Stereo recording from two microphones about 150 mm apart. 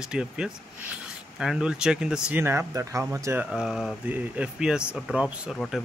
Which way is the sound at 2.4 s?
15° right (ahead or behind).